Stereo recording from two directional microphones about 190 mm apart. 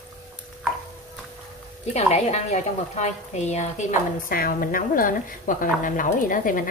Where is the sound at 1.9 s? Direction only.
35° left (ahead or behind).